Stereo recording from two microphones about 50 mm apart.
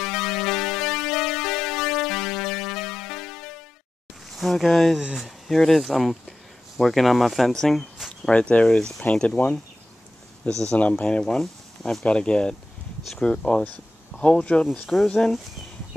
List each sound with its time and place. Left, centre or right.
0.0 s music: centre
4.3 s speech: centre
8.3 s speech: left
10.4 s speech: left
11.1 s speech: centre